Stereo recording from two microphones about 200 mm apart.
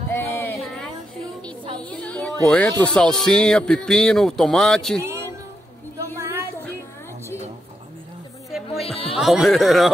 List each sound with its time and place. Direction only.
0.1 s a sound: 10° left (ahead or behind)
2.4 s speech: 5° left (ahead or behind)
5.0 s music: 15° right (ahead or behind)
6.1 s a sound: 15° right (ahead or behind)
8.5 s music: centre (ahead or behind)
8.8 s music: 30° left (ahead or behind)
9.1 s speech: centre (ahead or behind)